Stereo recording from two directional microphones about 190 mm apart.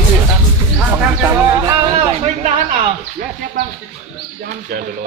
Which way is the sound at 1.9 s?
30° right (ahead or behind).